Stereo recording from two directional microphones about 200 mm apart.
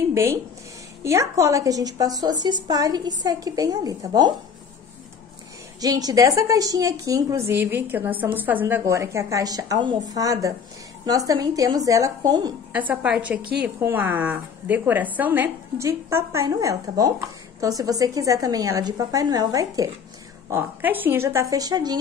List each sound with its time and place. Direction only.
0.1 s a woman's voice: 15° right (ahead or behind)
5.8 s a woman's voice: 20° right (ahead or behind)
12.7 s a woman's voice: 10° right (ahead or behind)
13.4 s a woman's voice: 50° right (ahead or behind)
13.7 s a woman's voice: 10° right (ahead or behind)